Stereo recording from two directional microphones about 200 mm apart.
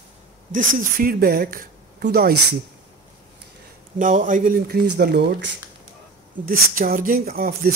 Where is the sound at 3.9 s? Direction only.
40° right (ahead or behind); by 5.2 s 55° right (ahead or behind).